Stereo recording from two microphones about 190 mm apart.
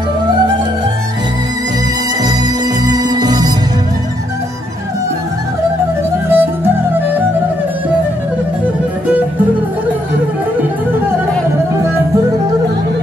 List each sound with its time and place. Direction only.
2.9 s music: 20° right (ahead or behind)
6.2 s music: 10° right (ahead or behind)